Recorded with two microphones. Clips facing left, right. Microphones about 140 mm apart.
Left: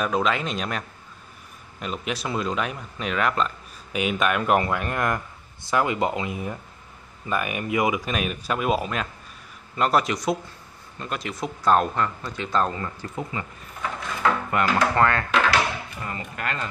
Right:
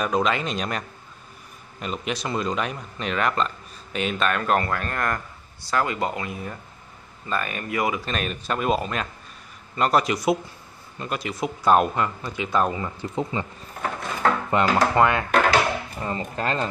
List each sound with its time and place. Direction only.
0.0 s speech: centre (ahead or behind); by 13.5 s 25° right (ahead or behind)
14.5 s speech: 25° right (ahead or behind)
15.5 s a sound: 30° right (ahead or behind)